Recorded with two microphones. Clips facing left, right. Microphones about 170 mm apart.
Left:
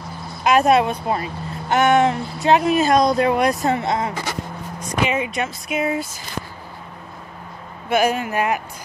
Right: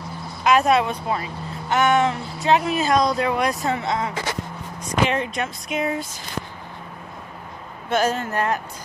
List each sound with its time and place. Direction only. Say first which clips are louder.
0.4 s speech: left 2 dB; 45° left (ahead or behind)
5.0 s speech: left 1 dB; 5° left (ahead or behind)
7.9 s speech: left 3 dB; 10° left (ahead or behind)